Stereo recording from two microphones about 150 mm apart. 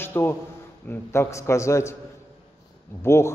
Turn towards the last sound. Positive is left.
turn(degrees=15)  # may be behind; listen again after turning